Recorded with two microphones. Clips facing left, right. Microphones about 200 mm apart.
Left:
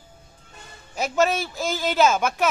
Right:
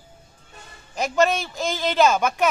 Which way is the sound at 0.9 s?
5° left (ahead or behind).